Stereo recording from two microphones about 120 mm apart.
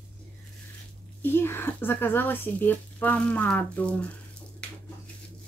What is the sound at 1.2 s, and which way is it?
Speech, 20° left (ahead or behind).